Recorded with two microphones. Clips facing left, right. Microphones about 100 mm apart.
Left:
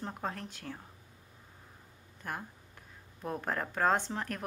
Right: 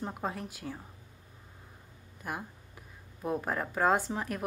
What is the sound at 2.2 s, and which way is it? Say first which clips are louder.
Speech: right 2 dB; 10° right (ahead or behind).